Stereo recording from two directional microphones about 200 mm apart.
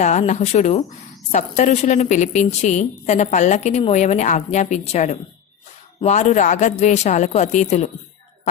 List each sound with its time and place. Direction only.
0.0 s a woman's voice: 35° left (ahead or behind)